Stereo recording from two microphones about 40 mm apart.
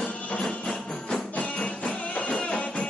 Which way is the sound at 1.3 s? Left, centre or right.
Left.